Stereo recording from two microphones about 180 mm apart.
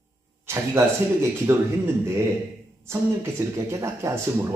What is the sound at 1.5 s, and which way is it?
Speech, 15° right (ahead or behind).